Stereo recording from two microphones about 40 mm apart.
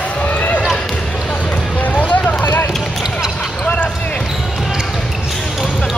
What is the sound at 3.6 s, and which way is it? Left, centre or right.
Basketball bounce, left.